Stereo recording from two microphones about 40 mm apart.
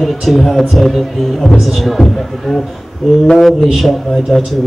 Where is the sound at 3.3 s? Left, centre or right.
Centre.